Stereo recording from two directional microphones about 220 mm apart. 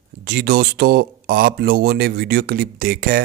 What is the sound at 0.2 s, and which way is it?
Speech, 45° right (ahead or behind).